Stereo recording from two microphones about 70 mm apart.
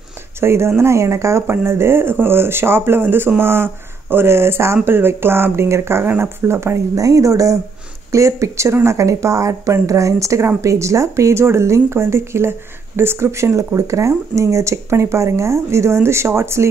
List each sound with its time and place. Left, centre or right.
0.4 s speech: right